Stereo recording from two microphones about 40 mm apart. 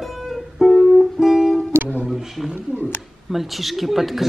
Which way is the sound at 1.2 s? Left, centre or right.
Centre.